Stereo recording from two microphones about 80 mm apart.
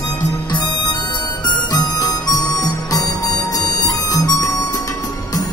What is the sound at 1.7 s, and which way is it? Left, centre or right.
Music, left.